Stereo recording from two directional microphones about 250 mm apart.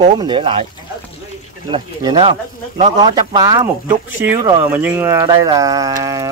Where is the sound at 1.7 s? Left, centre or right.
Right.